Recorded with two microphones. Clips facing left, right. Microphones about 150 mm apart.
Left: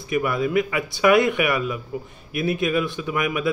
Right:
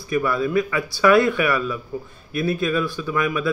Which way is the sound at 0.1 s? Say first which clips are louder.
Right 1 dB; 20° left (ahead or behind).